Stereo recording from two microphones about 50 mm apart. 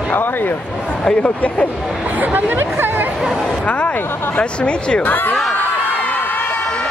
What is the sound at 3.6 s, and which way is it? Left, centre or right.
Speech, left.